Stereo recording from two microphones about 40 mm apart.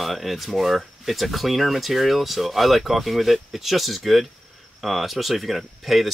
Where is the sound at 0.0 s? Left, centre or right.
Centre.